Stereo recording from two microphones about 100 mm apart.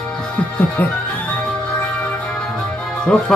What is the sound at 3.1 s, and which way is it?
Speech, 10° left (ahead or behind).